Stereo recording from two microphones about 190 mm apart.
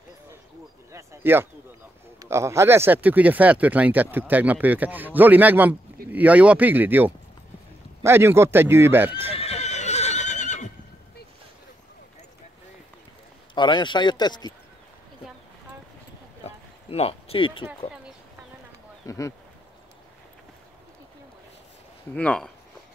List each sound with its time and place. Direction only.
0.9 s speech: 10° right (ahead or behind)
9.3 s neigh: 35° left (ahead or behind)
13.6 s speech: 25° left (ahead or behind)
16.4 s a sound: 30° left (ahead or behind)
19.0 s speech: 15° left (ahead or behind)
22.1 s speech: 5° left (ahead or behind)